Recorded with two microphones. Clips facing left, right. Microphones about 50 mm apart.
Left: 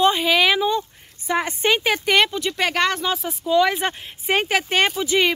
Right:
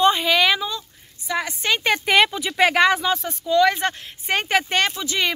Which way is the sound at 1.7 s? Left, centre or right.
Centre.